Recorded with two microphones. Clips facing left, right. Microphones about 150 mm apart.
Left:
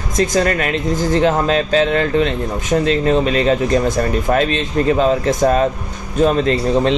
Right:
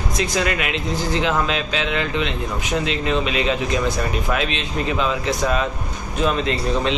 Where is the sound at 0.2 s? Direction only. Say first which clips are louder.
Left 7 dB; 45° left (ahead or behind).